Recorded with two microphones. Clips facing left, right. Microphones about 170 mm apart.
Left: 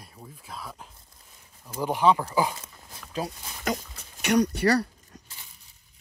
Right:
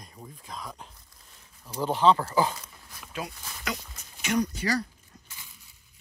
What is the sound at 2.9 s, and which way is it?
Dog, 35° left (ahead or behind).